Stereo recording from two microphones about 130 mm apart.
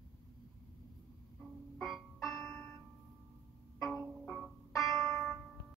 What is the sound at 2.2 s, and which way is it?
Music, 25° left (ahead or behind).